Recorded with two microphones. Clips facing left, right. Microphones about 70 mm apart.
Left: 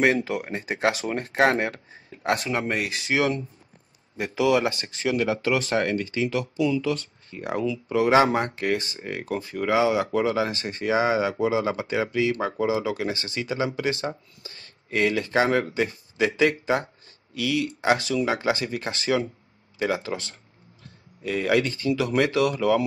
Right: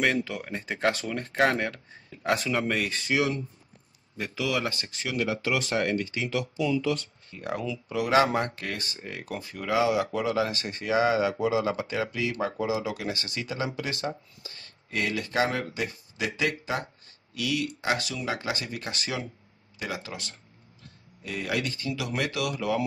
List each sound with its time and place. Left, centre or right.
0.0 s speech: left
2.2 s speech: centre
3.1 s speech: left
4.4 s speech: left
4.9 s speech: left
7.4 s speech: left
9.3 s speech: left